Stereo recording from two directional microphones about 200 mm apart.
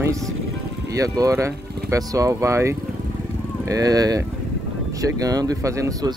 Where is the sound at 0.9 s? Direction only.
15° right (ahead or behind).